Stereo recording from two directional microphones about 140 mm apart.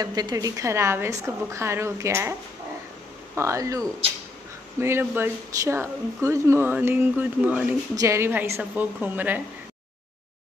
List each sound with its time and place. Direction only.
0.0 s a woman's voice: 30° right (ahead or behind)
3.3 s a woman's voice: 20° right (ahead or behind)